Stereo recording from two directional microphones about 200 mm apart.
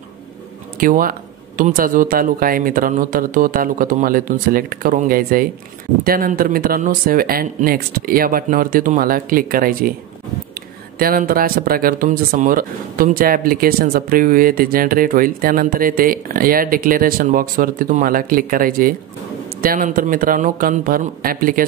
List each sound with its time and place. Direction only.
0.7 s speech: 45° right (ahead or behind)
11.0 s speech: 45° right (ahead or behind)